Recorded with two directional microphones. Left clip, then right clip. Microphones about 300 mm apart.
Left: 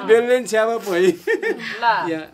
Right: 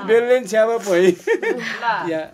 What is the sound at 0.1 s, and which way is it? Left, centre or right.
A man's voice, centre.